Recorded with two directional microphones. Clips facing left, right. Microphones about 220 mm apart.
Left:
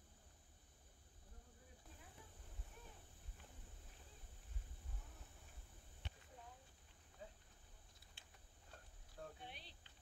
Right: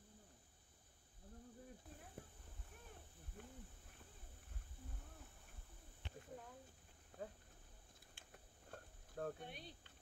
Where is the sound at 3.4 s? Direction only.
55° right (ahead or behind).